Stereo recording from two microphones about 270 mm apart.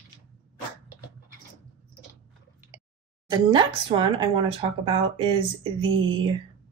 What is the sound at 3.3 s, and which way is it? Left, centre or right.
Speech, centre.